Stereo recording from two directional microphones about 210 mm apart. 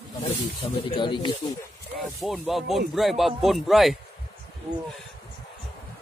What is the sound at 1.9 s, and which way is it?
Speech, centre (ahead or behind).